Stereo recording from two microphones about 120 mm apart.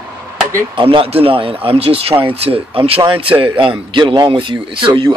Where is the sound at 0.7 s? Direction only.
50° right (ahead or behind).